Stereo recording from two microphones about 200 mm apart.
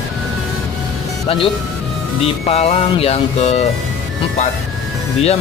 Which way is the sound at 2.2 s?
30° left (ahead or behind).